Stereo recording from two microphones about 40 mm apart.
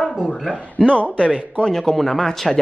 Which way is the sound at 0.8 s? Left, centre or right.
Left.